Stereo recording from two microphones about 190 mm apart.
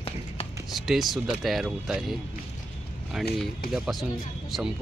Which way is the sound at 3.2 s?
Centre (ahead or behind).